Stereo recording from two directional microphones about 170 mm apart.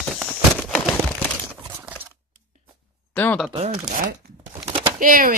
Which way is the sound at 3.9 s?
65° right (ahead or behind).